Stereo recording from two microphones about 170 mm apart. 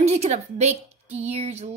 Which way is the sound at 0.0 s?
40° right (ahead or behind).